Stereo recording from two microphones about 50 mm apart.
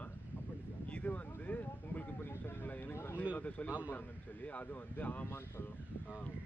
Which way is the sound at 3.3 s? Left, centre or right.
Left.